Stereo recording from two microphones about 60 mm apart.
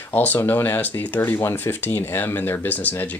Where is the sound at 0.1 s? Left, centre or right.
Left.